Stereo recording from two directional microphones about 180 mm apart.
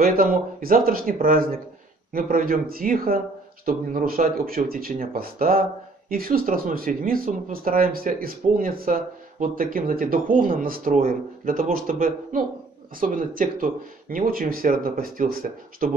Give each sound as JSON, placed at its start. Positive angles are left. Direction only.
{"t": 0.0, "sound": "speech", "side_deg": -50}